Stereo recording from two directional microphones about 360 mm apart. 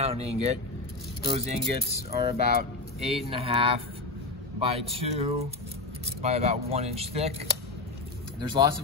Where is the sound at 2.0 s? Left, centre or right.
Centre.